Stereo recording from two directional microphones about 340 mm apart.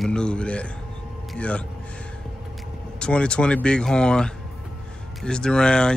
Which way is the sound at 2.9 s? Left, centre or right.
Centre.